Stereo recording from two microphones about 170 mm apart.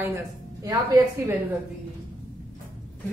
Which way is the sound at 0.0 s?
15° right (ahead or behind).